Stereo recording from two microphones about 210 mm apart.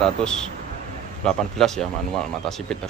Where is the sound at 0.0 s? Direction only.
5° left (ahead or behind).